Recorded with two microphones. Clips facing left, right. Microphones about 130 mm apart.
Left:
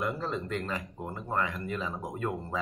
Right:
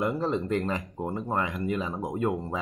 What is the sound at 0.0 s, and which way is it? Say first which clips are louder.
Speech: right 5 dB; 25° right (ahead or behind).